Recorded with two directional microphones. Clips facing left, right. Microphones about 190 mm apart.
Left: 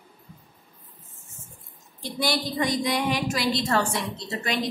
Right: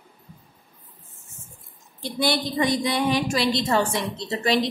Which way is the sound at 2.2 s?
25° right (ahead or behind).